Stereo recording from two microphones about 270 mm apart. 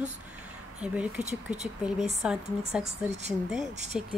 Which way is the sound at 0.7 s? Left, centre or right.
Centre.